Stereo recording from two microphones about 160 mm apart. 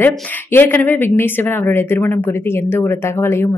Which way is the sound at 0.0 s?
15° left (ahead or behind).